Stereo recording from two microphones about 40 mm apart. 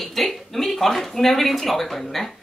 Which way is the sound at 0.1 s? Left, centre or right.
Centre.